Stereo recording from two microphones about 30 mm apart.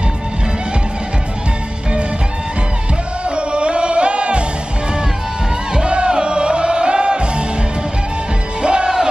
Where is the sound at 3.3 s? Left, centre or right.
Right.